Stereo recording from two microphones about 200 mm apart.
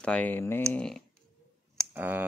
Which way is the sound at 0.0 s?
5° left (ahead or behind).